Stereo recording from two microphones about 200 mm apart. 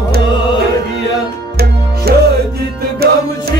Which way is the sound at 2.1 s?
50° right (ahead or behind).